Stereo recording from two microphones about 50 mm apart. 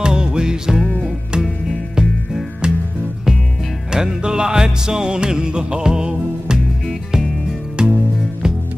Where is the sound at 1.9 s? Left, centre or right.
Centre.